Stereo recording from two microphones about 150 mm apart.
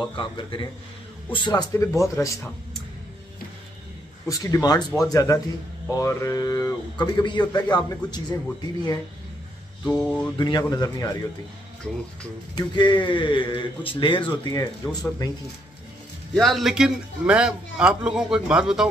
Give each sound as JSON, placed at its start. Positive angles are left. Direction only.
{"t": 0.1, "sound": "a man's voice", "side_deg": 35}
{"t": 4.3, "sound": "a man's voice", "side_deg": 25}
{"t": 9.8, "sound": "a man's voice", "side_deg": 5}
{"t": 10.3, "sound": "a man's voice", "side_deg": 30}
{"t": 12.5, "sound": "a man's voice", "side_deg": 30}
{"t": 16.3, "sound": "a man's voice", "side_deg": 0}